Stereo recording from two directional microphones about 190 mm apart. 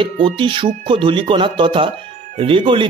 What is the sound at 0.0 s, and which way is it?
Speech, 25° right (ahead or behind).